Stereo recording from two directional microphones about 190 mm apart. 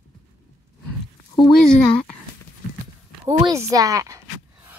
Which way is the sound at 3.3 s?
25° right (ahead or behind).